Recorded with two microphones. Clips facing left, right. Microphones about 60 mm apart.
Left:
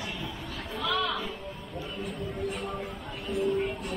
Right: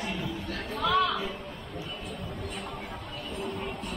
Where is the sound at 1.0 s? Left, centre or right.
Centre.